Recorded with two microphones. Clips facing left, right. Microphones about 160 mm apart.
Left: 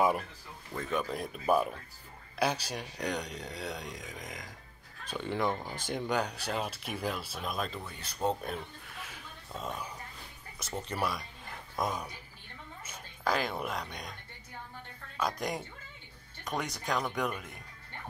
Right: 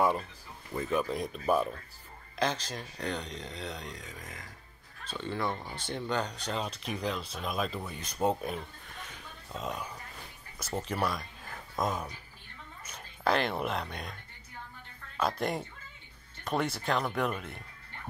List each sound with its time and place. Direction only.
0.7 s speech: 5° right (ahead or behind)
3.9 s speech: 20° left (ahead or behind); by 7.8 s centre (ahead or behind)
7.8 s speech: 15° right (ahead or behind)
8.9 s a sound: 5° left (ahead or behind)
10.9 s speech: centre (ahead or behind)
13.4 s speech: centre (ahead or behind)
15.1 s speech: 5° right (ahead or behind)